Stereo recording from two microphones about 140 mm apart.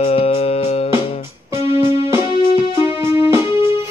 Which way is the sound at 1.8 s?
15° right (ahead or behind).